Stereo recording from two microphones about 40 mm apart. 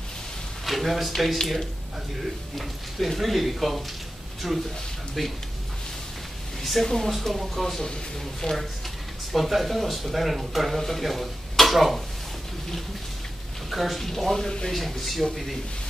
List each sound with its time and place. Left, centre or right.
0.7 s speech: centre
2.5 s speech: centre
6.6 s speech: centre
7.1 s speech: centre
8.4 s speech: left
9.3 s speech: centre
13.7 s speech: centre